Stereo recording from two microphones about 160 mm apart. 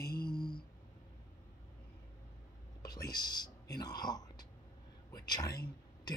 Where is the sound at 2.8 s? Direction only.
25° left (ahead or behind).